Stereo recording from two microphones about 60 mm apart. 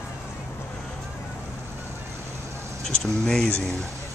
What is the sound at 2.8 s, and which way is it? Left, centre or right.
Speech, centre.